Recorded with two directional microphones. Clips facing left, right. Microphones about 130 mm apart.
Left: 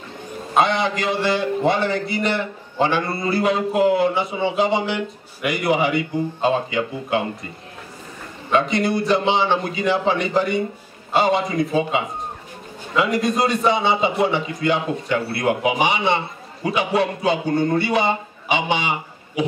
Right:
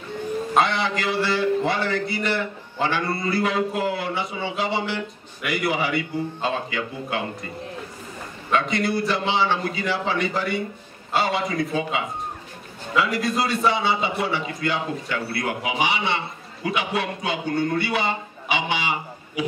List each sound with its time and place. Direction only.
0.6 s a man's voice: 20° left (ahead or behind)
8.5 s a man's voice: 25° left (ahead or behind)